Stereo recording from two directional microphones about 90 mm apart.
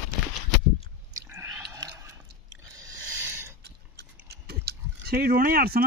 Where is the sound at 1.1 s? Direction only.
30° right (ahead or behind).